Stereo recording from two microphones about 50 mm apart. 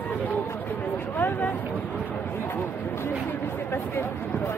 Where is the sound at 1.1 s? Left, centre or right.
Left.